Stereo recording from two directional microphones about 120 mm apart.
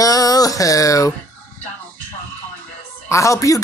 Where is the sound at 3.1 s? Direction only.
25° left (ahead or behind).